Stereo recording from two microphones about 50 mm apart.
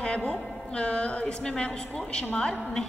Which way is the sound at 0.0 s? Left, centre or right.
Left.